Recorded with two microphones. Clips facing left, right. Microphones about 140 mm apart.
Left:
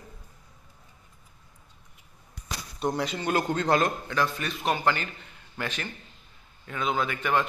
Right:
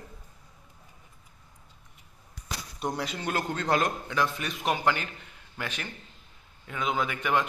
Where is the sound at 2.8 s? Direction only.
5° right (ahead or behind).